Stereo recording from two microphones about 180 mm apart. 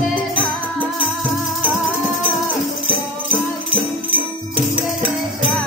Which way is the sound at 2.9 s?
30° right (ahead or behind).